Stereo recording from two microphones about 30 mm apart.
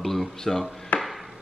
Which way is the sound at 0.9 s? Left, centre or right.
Left.